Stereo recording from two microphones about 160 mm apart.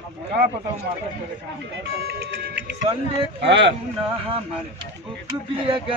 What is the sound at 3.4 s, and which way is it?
Speech, 90° right.